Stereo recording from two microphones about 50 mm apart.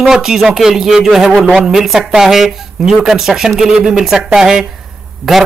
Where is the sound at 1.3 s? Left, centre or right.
Centre.